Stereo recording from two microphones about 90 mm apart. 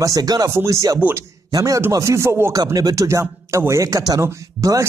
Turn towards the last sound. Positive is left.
turn(degrees=0)  # may be behind; listen again after turning